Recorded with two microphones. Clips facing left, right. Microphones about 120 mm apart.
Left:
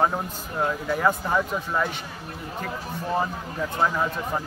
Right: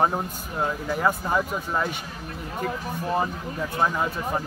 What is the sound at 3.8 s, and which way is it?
Speech, 15° right (ahead or behind).